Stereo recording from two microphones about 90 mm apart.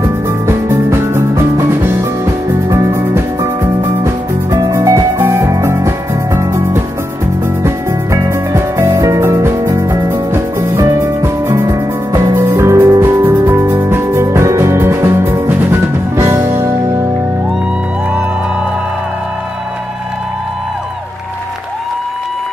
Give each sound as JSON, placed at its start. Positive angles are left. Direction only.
{"t": 0.5, "sound": "music", "side_deg": -30}
{"t": 7.6, "sound": "music", "side_deg": -30}